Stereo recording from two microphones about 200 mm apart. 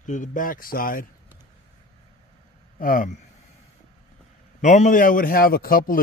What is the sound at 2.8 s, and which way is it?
Speech, 40° left (ahead or behind).